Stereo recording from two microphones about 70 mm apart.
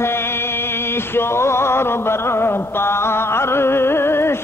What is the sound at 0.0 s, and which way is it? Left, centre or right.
Music, left.